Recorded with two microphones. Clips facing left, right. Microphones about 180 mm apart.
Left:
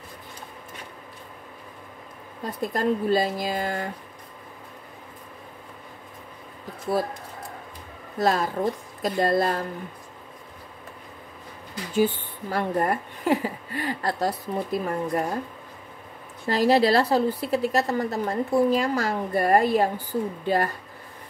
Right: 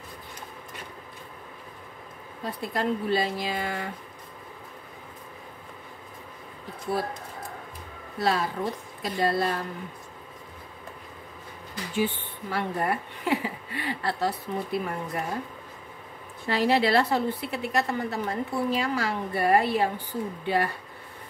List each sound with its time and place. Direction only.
2.6 s a woman's voice: 45° left (ahead or behind)
8.2 s a woman's voice: 45° left (ahead or behind)
11.9 s a woman's voice: 40° left (ahead or behind)
16.4 s a woman's voice: 40° left (ahead or behind)